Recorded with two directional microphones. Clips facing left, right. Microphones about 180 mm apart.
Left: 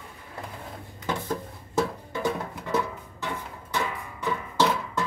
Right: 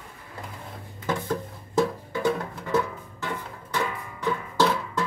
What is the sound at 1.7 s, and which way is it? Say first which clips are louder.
Music: right 3 dB; 5° left (ahead or behind).